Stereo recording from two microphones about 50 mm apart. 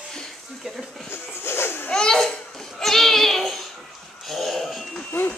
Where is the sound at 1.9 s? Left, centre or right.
Centre.